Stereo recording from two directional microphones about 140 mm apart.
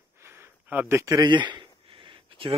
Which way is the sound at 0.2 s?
15° right (ahead or behind).